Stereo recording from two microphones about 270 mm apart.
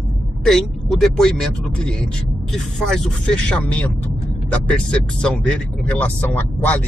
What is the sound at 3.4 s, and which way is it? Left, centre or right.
Speech, centre.